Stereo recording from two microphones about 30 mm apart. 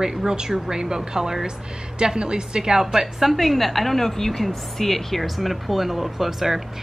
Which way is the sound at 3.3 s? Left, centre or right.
Centre.